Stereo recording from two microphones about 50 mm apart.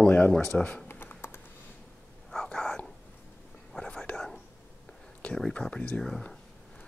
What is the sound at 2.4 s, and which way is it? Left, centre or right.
Dog, centre.